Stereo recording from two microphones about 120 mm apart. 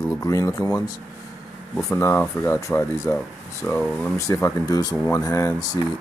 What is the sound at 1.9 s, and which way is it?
Speech, 20° left (ahead or behind).